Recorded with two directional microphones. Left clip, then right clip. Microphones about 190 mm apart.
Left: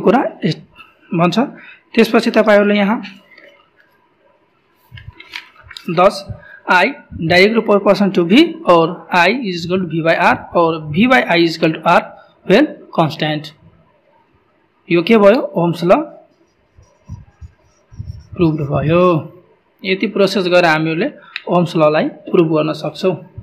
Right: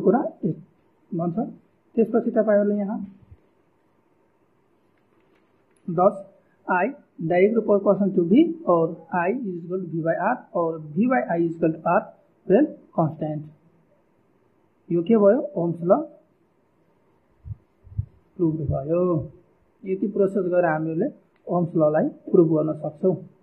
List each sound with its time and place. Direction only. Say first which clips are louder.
0.0 s speech: left 8 dB; 30° left (ahead or behind)
1.9 s speech: left 9 dB; 40° left (ahead or behind)
5.8 s a man's voice: left 8 dB; 20° left (ahead or behind)
14.9 s a man's voice: left 8 dB; 25° left (ahead or behind)
18.4 s a man's voice: left 9 dB; 30° left (ahead or behind)